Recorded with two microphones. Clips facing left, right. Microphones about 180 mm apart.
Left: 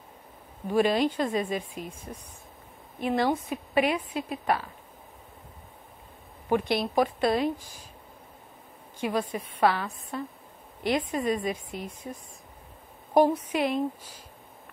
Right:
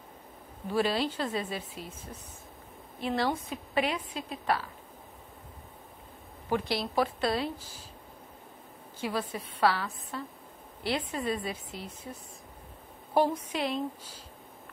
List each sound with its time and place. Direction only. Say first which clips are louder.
0.7 s a woman's voice: left 5 dB; 15° left (ahead or behind)
3.0 s a woman's voice: left 4 dB; 15° left (ahead or behind)
6.5 s a woman's voice: left 4 dB; 20° left (ahead or behind)
9.0 s a woman's voice: left 4 dB; 15° left (ahead or behind)